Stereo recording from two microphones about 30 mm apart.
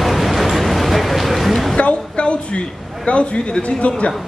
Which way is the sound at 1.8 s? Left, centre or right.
Left.